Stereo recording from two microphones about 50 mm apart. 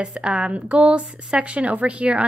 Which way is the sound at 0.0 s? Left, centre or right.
Right.